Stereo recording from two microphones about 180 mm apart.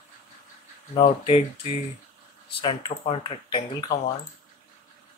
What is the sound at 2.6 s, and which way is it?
Speech, 30° left (ahead or behind).